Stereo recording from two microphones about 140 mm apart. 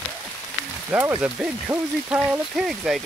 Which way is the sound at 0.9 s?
20° right (ahead or behind).